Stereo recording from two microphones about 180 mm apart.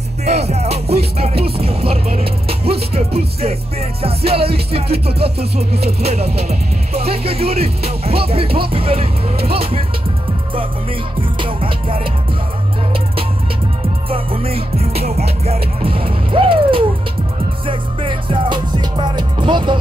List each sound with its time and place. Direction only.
0.2 s music: 35° right (ahead or behind)
3.2 s speech: 35° right (ahead or behind)
11.1 s music: 30° right (ahead or behind)
14.0 s music: 30° right (ahead or behind)